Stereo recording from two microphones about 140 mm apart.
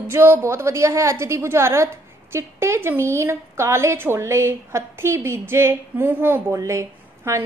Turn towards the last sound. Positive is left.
turn(degrees=-20)  # may be behind; listen again after turning